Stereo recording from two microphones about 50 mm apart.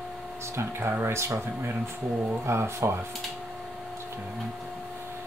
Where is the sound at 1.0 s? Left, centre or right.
Right.